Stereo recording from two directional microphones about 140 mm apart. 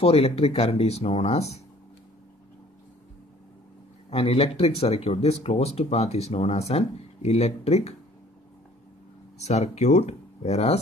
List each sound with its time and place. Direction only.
0.0 s speech: 45° left (ahead or behind)
4.1 s speech: 45° left (ahead or behind)
9.4 s speech: 50° left (ahead or behind)